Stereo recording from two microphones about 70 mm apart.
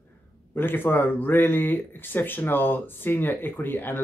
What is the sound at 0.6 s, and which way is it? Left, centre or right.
Speech, left.